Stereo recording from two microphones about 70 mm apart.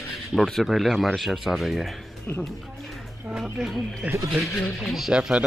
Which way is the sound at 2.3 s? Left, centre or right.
Left.